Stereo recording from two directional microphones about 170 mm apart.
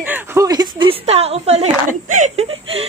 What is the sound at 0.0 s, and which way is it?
Speech, 10° right (ahead or behind).